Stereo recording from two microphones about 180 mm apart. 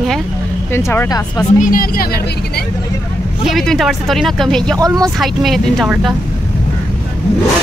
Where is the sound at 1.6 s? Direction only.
50° left (ahead or behind).